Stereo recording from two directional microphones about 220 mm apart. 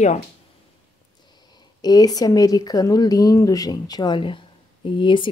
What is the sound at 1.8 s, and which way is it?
Speech, 15° left (ahead or behind).